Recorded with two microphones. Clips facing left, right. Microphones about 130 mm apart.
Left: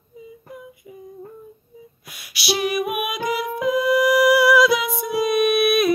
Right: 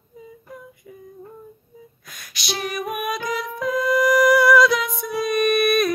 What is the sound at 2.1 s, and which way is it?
Music, 10° left (ahead or behind).